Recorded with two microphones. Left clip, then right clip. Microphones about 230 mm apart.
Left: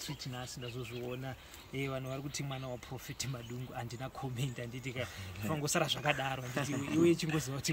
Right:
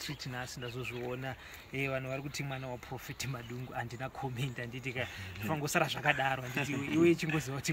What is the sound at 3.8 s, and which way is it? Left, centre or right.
A man's voice, centre.